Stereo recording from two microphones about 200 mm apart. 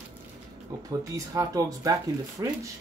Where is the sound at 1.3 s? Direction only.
15° right (ahead or behind).